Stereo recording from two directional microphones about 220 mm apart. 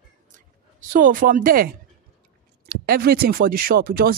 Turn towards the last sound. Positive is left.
turn(degrees=-40)  # may be behind; listen again after turning